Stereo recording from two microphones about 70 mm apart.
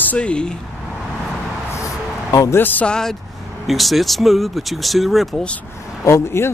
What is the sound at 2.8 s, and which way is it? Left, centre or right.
Speech, centre.